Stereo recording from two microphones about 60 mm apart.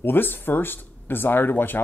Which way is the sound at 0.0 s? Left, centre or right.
Left.